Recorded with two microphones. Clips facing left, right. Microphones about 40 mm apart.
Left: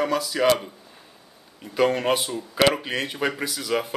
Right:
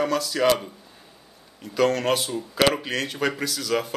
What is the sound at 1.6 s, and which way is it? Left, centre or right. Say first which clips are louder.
Speech: even; centre.